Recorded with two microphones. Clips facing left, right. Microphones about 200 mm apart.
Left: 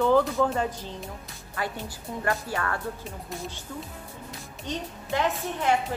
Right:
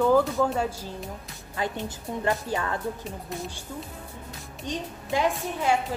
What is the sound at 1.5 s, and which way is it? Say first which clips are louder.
A woman's voice: right 2 dB; 20° right (ahead or behind).